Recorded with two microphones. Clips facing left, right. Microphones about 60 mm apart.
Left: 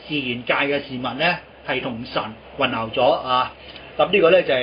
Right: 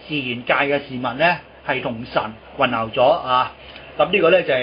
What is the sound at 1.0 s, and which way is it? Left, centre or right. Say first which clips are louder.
Speech: right 6 dB; centre.